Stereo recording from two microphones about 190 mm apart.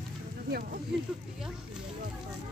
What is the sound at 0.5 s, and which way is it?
Speech, 50° right (ahead or behind).